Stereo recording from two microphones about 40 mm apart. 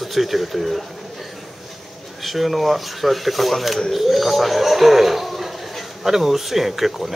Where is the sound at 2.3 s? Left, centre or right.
Centre.